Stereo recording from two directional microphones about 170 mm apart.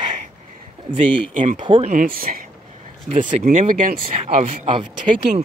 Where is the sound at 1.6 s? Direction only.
30° right (ahead or behind).